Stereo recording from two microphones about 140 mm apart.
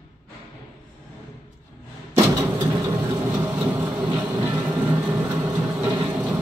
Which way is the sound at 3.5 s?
15° right (ahead or behind).